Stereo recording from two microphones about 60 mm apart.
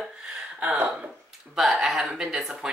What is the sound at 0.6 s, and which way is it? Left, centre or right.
Speech, right.